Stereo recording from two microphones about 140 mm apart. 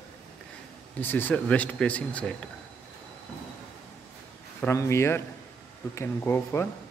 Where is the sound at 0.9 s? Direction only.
15° left (ahead or behind).